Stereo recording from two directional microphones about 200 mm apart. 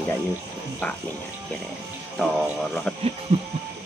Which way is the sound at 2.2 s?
Centre (ahead or behind).